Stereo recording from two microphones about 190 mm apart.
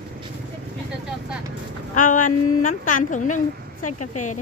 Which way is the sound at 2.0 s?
45° left (ahead or behind).